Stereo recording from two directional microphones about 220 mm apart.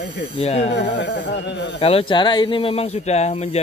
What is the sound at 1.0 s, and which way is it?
Speech, 55° left (ahead or behind).